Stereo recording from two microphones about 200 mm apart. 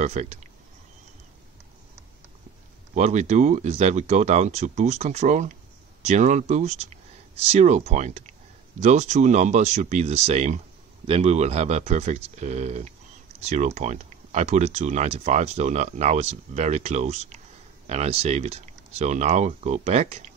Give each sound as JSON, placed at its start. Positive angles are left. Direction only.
{"t": 0.0, "sound": "speech", "side_deg": -35}
{"t": 2.9, "sound": "speech", "side_deg": -35}